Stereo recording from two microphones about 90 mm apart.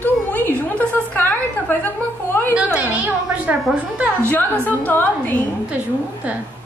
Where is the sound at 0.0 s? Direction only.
20° left (ahead or behind).